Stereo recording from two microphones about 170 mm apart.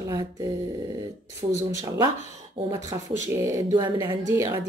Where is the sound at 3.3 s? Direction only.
15° right (ahead or behind).